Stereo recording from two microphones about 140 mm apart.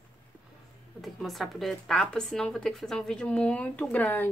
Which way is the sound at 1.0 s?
Centre (ahead or behind).